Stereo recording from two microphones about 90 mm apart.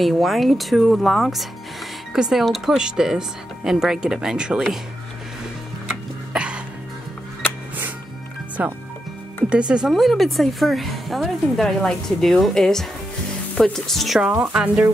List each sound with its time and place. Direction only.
0.0 s a woman's voice: centre (ahead or behind)
6.3 s music: 10° right (ahead or behind)
8.6 s a woman's voice: 15° right (ahead or behind)